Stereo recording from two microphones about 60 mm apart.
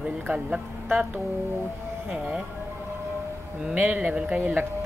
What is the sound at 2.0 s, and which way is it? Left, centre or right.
Speech, centre.